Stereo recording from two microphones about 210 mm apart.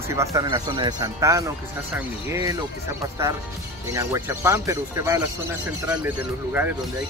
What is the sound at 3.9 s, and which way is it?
Speech, 15° right (ahead or behind).